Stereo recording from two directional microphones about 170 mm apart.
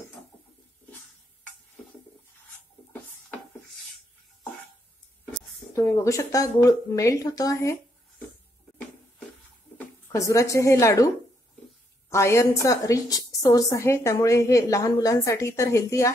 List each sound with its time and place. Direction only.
5.7 s a woman's voice: 20° left (ahead or behind)
9.8 s speech: 20° left (ahead or behind)
12.1 s a woman's voice: 15° left (ahead or behind)